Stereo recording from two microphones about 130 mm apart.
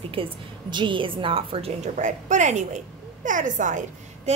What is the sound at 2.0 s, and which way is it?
A woman's voice, 70° right (ahead or behind).